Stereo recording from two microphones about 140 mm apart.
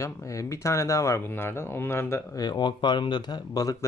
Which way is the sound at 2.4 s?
30° left (ahead or behind).